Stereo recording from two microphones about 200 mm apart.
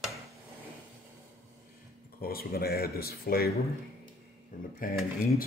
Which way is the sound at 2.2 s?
50° left (ahead or behind).